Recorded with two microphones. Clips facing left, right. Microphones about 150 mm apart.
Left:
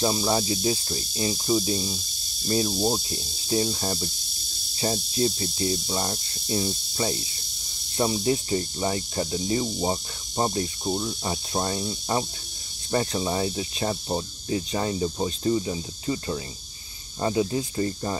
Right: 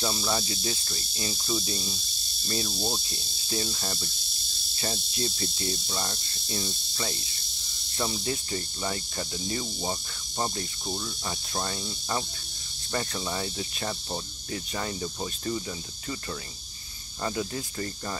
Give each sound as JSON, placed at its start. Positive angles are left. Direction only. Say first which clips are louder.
{"t": 0.0, "sound": "cricket", "louder": "left 6 dB", "side_deg": 25}